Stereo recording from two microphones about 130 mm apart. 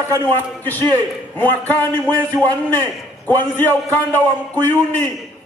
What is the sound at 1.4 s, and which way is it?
Speech, 15° left (ahead or behind).